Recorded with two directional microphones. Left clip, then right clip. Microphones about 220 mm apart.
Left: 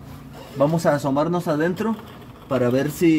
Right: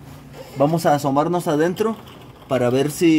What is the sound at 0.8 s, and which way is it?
Speech, 25° right (ahead or behind).